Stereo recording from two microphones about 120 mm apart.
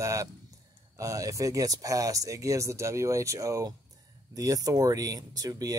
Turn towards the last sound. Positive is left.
turn(degrees=-30)  # may be behind; listen again after turning